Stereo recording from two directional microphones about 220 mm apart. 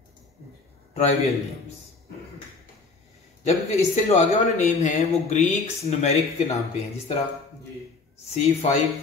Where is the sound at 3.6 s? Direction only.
30° left (ahead or behind).